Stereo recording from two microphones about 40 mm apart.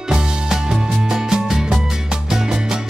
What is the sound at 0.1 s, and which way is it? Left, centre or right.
Music, centre.